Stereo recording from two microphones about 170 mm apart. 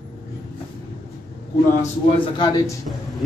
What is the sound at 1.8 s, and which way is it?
Speech, 30° left (ahead or behind).